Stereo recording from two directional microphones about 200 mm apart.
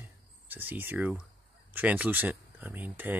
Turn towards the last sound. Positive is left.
turn(degrees=-10)  # may be behind; listen again after turning